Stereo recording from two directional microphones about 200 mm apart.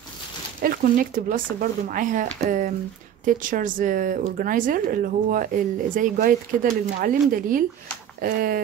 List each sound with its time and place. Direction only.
0.6 s speech: 45° right (ahead or behind)